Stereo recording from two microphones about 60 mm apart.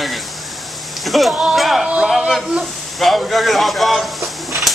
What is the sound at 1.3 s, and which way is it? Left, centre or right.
Speech, centre.